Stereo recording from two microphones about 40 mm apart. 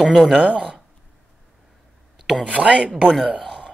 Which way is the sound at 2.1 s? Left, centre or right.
Centre.